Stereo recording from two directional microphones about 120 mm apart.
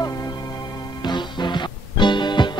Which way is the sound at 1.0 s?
40° left (ahead or behind).